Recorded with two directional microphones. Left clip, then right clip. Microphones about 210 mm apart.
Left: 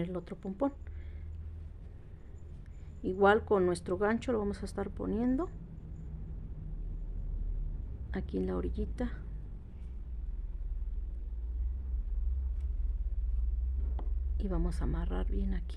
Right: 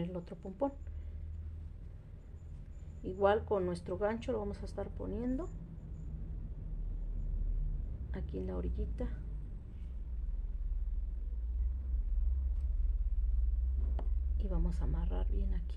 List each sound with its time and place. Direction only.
0.0 s speech: 30° left (ahead or behind)
3.0 s speech: 40° left (ahead or behind)
8.1 s speech: 40° left (ahead or behind)
14.0 s a sound: 20° right (ahead or behind)
14.4 s speech: 40° left (ahead or behind)